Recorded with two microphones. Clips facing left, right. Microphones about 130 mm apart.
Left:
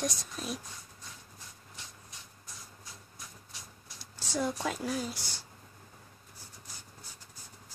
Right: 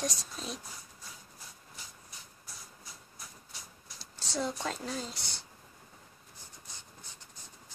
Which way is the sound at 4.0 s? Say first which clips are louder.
Left 2 dB; 10° left (ahead or behind).